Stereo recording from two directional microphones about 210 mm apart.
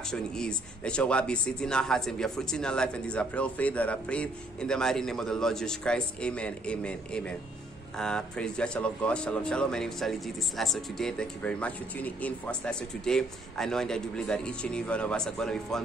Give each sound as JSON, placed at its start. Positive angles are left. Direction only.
{"t": 0.1, "sound": "speech", "side_deg": 5}